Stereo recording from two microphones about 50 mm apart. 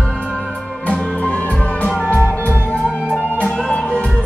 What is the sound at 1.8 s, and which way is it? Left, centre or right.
Music, left.